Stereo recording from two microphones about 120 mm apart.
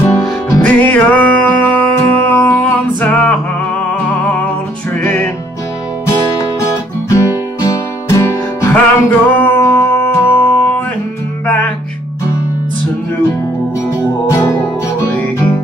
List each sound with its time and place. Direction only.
0.6 s music: 15° left (ahead or behind)
6.6 s music: 25° left (ahead or behind)
13.8 s music: 25° left (ahead or behind)